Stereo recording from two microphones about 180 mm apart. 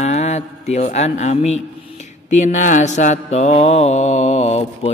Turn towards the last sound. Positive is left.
turn(degrees=35)  # may be behind; listen again after turning